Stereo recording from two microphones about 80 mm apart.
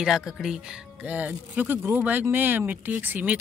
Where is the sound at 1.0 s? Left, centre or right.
Right.